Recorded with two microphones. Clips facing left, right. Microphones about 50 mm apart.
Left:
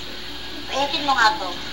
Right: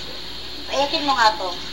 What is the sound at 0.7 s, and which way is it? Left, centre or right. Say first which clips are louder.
Speech: right 1 dB; left.